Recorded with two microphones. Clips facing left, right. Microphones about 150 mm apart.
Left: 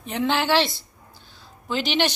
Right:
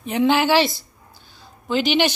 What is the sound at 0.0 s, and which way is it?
A woman's voice, 5° right (ahead or behind).